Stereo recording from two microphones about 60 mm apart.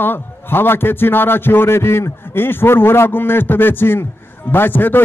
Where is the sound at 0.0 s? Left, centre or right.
Left.